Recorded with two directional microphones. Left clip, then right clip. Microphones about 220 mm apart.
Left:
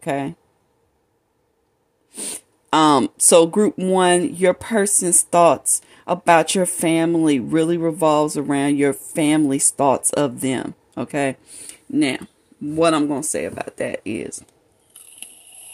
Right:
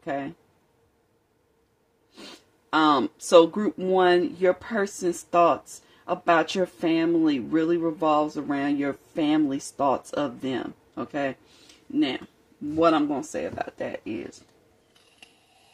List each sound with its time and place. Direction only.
0.0 s speech: 50° left (ahead or behind)
2.1 s speech: 50° left (ahead or behind)
12.7 s speech: 40° left (ahead or behind)